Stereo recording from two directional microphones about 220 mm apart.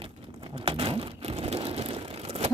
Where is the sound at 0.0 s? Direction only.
25° right (ahead or behind).